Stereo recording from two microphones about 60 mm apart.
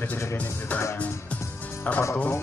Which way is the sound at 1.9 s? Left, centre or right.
Left.